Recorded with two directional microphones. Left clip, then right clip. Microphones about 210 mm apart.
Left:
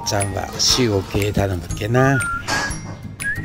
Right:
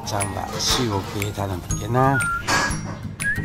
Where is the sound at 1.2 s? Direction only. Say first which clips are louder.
Left 6 dB; 15° left (ahead or behind).